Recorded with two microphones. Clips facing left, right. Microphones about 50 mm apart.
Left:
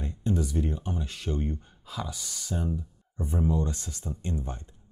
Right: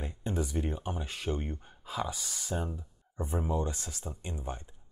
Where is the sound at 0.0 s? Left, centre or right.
Centre.